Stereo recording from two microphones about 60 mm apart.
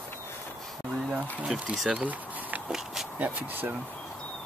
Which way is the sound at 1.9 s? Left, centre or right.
Right.